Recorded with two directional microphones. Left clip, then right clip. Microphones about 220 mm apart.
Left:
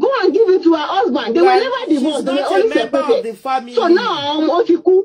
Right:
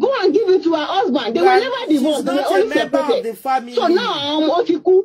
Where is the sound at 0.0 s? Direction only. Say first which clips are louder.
Left 2 dB; 20° left (ahead or behind).